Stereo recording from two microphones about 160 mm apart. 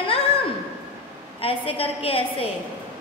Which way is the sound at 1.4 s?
35° left (ahead or behind).